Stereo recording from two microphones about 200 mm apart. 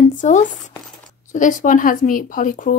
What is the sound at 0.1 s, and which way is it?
A woman's voice, 40° left (ahead or behind).